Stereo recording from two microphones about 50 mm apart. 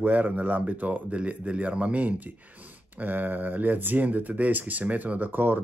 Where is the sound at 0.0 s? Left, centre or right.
Right.